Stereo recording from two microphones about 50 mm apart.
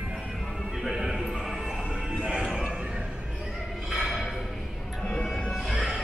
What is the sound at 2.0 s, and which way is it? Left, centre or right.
Music, centre.